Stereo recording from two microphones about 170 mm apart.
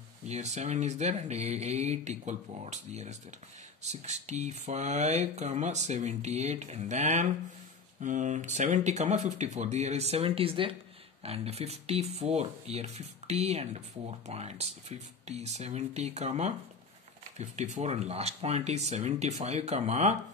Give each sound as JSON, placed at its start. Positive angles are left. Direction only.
{"t": 0.3, "sound": "speech", "side_deg": -40}
{"t": 17.7, "sound": "speech", "side_deg": -40}